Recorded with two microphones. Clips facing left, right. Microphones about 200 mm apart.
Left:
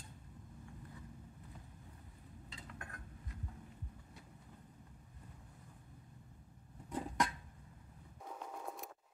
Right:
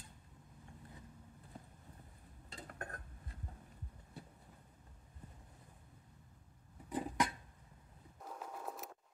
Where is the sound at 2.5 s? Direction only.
45° right (ahead or behind).